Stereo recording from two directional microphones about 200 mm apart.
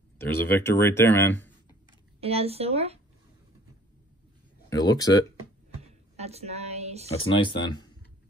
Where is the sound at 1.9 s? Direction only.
30° right (ahead or behind).